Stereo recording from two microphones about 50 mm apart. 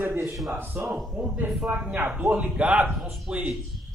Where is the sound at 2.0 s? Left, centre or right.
Right.